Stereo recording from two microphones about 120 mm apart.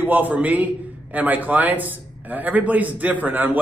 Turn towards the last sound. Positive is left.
turn(degrees=-15)  # may be behind; listen again after turning